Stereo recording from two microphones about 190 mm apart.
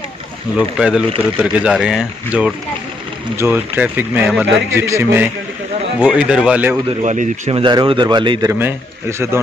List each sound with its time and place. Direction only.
0.6 s speech: 5° right (ahead or behind)
7.0 s speech: 40° right (ahead or behind)
7.5 s a man's voice: 25° right (ahead or behind)